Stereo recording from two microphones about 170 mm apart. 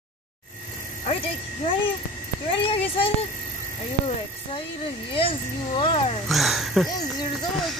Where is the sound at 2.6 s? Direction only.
35° left (ahead or behind).